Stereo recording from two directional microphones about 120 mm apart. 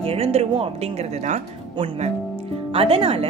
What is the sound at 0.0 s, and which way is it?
Speech, 55° right (ahead or behind).